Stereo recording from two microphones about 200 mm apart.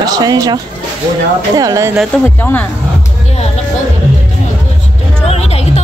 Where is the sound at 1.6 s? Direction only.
15° right (ahead or behind).